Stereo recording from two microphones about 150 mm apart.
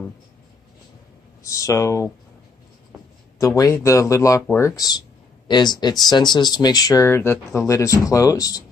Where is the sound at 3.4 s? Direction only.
20° left (ahead or behind).